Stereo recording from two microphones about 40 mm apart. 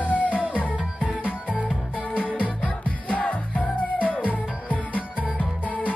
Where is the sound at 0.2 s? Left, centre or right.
Right.